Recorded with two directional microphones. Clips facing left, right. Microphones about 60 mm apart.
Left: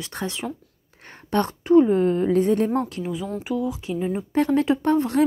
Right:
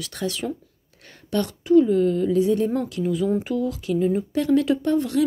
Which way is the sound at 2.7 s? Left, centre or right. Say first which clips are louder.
Left 1 dB; left.